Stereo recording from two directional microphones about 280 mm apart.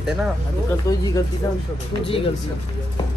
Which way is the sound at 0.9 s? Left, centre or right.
Centre.